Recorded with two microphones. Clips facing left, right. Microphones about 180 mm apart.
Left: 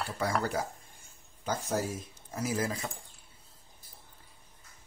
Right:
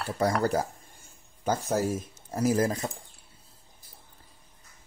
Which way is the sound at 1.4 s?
50° right (ahead or behind).